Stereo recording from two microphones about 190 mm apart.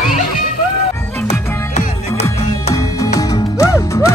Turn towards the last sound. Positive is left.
turn(degrees=15)  # may be behind; listen again after turning